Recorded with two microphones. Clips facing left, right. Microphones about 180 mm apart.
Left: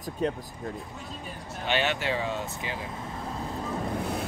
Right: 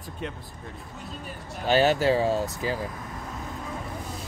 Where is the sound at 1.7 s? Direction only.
40° right (ahead or behind).